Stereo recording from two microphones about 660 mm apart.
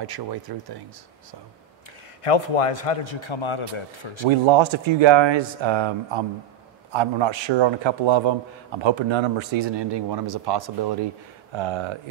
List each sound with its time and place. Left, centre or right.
0.0 s a man's voice: right
2.2 s speech: left
4.3 s a man's voice: right